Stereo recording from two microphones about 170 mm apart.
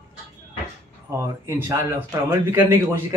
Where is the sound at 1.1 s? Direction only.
15° right (ahead or behind).